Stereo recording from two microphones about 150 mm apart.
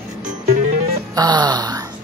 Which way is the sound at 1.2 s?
30° right (ahead or behind).